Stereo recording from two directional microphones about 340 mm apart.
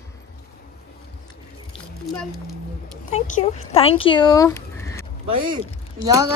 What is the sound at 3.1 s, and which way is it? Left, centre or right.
Speech, left.